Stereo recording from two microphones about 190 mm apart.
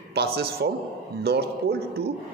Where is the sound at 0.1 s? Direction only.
60° right (ahead or behind).